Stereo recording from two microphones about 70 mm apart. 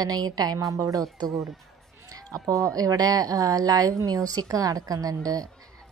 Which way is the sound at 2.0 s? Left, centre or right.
Right.